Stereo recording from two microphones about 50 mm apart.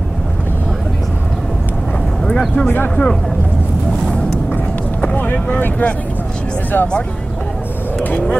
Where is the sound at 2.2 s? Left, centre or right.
Centre.